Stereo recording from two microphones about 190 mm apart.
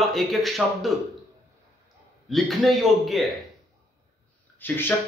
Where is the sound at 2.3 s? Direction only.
Centre (ahead or behind).